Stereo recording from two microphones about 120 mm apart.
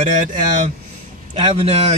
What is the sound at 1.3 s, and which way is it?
Speech, 55° right (ahead or behind).